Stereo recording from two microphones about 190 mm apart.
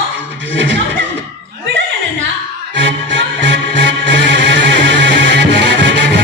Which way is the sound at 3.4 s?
65° right (ahead or behind).